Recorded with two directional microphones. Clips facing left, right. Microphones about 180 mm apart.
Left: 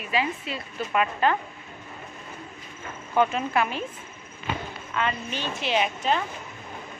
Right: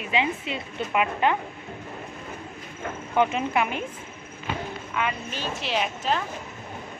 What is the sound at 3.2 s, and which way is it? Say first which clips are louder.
Speech: even; 20° right (ahead or behind).